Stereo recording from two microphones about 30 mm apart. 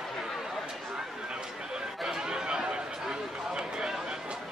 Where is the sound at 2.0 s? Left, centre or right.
Right.